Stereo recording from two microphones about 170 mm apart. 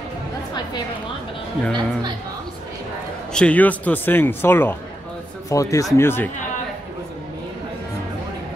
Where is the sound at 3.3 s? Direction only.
5° left (ahead or behind).